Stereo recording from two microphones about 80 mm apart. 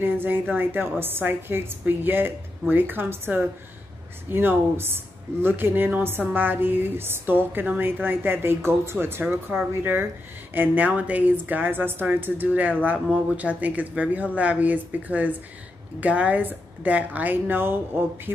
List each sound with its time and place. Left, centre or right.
0.0 s speech: right